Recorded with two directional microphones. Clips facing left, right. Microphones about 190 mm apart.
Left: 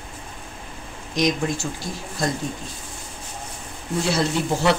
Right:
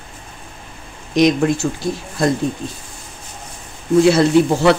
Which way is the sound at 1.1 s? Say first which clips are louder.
Right 8 dB; 65° right (ahead or behind).